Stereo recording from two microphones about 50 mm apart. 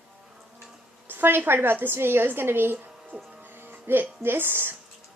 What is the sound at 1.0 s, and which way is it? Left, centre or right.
A woman's voice, right.